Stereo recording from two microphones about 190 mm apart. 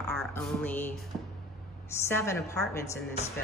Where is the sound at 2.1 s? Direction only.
15° left (ahead or behind).